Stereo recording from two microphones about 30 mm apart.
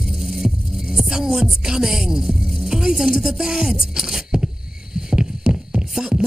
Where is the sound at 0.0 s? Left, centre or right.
Centre.